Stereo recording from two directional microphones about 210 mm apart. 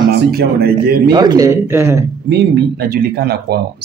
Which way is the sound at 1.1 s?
20° right (ahead or behind).